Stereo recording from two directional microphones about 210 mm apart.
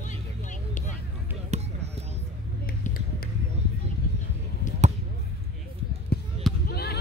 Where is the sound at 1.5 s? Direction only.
30° right (ahead or behind).